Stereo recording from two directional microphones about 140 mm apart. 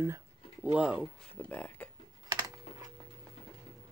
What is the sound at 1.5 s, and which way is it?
Speech, 10° left (ahead or behind).